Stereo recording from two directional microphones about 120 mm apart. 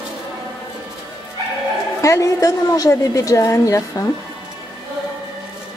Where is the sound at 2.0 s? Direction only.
25° left (ahead or behind).